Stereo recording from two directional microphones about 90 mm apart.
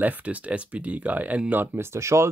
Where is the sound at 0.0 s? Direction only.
15° right (ahead or behind).